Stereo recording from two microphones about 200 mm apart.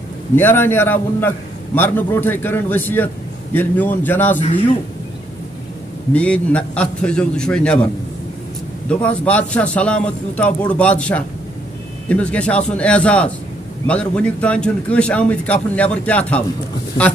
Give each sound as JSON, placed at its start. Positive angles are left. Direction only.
{"t": 0.4, "sound": "a man's voice", "side_deg": 10}
{"t": 6.1, "sound": "a man's voice", "side_deg": 5}
{"t": 8.8, "sound": "a man's voice", "side_deg": 5}